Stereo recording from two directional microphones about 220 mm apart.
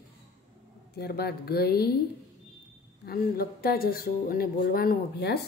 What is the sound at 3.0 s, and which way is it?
Speech, 45° left (ahead or behind).